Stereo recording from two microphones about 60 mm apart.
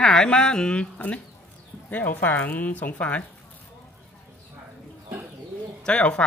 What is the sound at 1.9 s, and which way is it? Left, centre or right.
Speech, left.